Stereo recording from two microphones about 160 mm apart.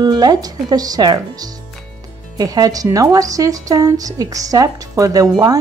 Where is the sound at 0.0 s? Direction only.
25° right (ahead or behind).